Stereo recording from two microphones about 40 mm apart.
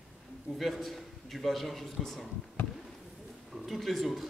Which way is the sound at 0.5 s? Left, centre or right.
Centre.